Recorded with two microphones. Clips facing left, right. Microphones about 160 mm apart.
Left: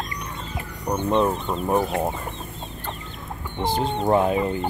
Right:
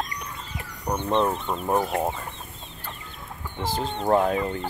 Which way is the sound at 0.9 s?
10° left (ahead or behind).